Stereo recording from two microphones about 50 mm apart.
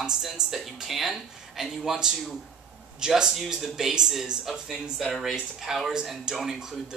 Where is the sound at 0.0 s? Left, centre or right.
Centre.